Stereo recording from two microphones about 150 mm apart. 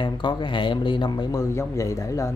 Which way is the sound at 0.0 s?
30° left (ahead or behind).